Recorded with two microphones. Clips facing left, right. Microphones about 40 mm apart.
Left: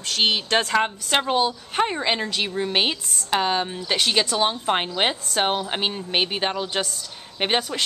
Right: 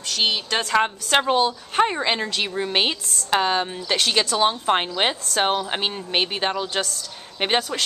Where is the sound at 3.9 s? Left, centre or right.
Centre.